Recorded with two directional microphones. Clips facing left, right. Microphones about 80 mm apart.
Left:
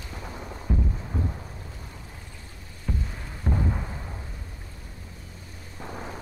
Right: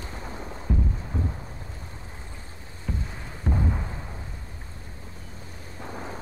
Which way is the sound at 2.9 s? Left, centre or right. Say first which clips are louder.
Left 1 dB; centre.